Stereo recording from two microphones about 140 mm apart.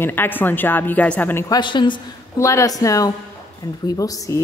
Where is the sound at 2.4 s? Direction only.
20° left (ahead or behind).